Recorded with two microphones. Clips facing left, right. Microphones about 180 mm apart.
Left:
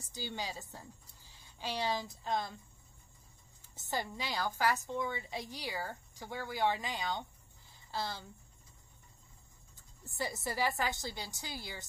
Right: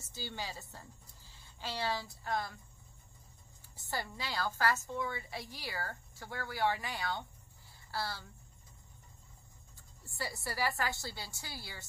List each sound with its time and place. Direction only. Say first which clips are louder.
0.0 s a woman's voice: left 2 dB; 15° left (ahead or behind)
3.7 s a woman's voice: left 2 dB; 20° left (ahead or behind)
9.8 s a woman's voice: left 3 dB; 20° left (ahead or behind)